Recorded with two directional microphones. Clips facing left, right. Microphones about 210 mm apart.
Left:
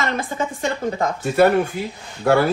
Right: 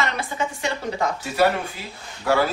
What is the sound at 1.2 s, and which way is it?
Speech, 55° left (ahead or behind).